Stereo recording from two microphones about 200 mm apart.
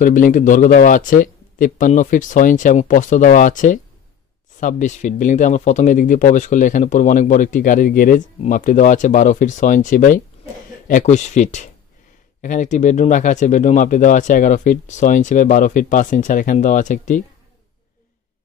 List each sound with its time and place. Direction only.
0.0 s speech: 40° left (ahead or behind)